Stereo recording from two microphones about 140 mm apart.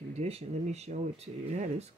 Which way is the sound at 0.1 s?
50° right (ahead or behind).